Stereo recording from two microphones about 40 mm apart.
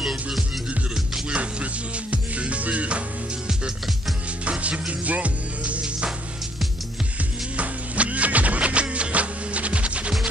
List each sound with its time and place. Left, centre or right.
0.0 s music: centre
1.3 s music: right
4.5 s music: right
7.5 s music: right